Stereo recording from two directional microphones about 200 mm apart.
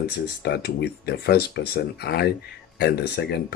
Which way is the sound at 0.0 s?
55° left (ahead or behind).